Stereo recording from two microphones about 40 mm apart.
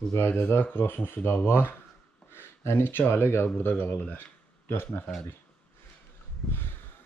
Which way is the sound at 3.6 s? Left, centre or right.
Left.